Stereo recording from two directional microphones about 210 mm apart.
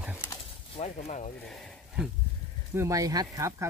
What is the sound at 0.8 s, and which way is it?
Speech, 35° left (ahead or behind).